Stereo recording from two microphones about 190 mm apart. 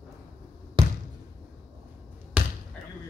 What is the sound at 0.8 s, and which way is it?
Basketball bounce, 25° right (ahead or behind).